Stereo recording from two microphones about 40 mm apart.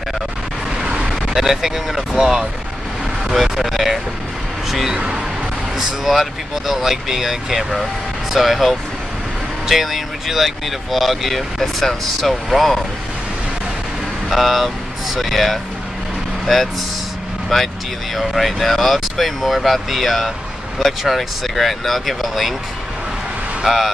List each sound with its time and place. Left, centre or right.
0.8 s vehicle: right
1.2 s speech: centre
4.9 s speech: right
5.8 s speech: centre
14.3 s speech: centre
17.5 s speech: centre
23.6 s speech: centre